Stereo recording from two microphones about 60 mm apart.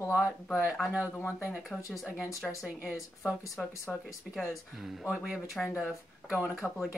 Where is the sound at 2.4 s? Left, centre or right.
Centre.